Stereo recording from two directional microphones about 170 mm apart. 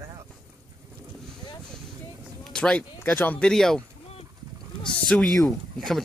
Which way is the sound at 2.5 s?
5° left (ahead or behind).